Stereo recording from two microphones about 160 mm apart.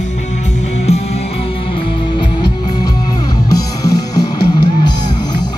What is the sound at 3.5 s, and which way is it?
Music, 25° left (ahead or behind).